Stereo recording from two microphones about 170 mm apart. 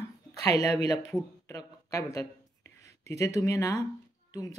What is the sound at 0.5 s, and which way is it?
Speech, 20° left (ahead or behind).